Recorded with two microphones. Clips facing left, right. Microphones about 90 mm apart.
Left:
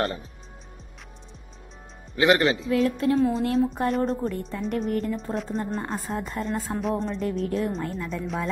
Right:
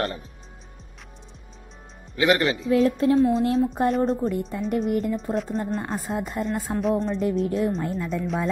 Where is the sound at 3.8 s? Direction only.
20° right (ahead or behind).